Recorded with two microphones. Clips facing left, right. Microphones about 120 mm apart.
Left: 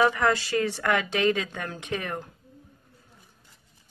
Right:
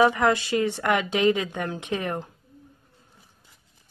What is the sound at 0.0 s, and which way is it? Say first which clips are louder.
Speech: right 3 dB; 20° right (ahead or behind).